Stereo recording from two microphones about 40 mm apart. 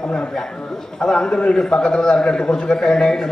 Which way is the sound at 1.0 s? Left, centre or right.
Centre.